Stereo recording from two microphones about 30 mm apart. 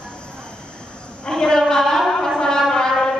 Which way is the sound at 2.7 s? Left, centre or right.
Centre.